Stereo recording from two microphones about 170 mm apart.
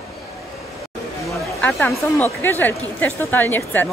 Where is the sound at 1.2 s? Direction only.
5° left (ahead or behind).